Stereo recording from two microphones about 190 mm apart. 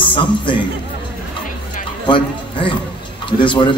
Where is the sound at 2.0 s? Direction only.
25° left (ahead or behind).